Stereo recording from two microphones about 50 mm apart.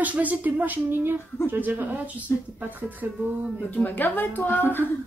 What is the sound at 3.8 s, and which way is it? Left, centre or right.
Speech, left.